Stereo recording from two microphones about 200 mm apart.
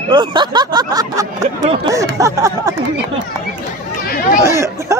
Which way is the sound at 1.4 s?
35° right (ahead or behind).